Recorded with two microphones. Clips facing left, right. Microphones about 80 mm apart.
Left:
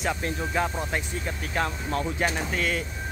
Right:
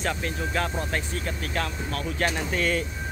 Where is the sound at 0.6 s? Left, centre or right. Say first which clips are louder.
Left 1 dB; centre.